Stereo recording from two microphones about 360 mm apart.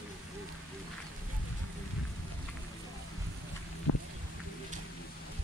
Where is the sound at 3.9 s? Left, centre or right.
Left.